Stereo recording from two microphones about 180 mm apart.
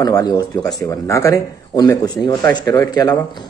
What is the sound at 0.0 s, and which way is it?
Speech, 20° left (ahead or behind).